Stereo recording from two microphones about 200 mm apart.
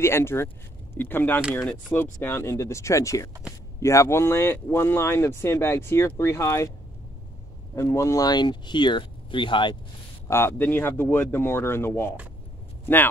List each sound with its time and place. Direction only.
0.0 s speech: 10° left (ahead or behind)
7.7 s speech: 15° left (ahead or behind)
10.2 s speech: 10° left (ahead or behind)